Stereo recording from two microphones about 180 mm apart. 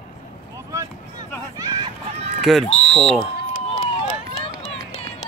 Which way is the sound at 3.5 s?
45° left (ahead or behind).